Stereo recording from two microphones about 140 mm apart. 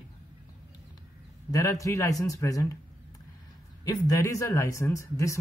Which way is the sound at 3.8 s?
25° left (ahead or behind).